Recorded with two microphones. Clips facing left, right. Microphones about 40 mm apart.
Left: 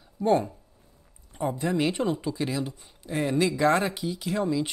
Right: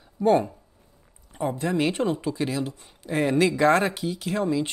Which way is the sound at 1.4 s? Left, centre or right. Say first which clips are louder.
Right 1 dB; right.